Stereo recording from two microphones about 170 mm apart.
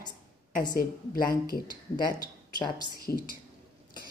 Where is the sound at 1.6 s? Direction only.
25° left (ahead or behind).